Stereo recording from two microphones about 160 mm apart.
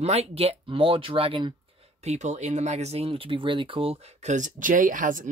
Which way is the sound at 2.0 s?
45° right (ahead or behind).